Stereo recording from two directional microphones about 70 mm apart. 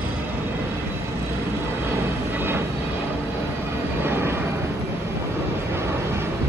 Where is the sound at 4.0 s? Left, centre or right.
Right.